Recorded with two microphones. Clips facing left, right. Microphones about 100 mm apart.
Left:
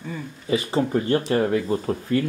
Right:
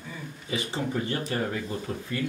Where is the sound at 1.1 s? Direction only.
75° left (ahead or behind).